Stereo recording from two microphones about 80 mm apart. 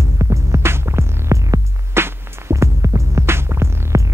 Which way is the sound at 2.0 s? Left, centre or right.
Right.